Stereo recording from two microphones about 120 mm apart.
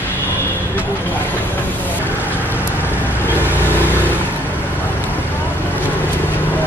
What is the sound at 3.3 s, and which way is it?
Vehicle, 15° left (ahead or behind).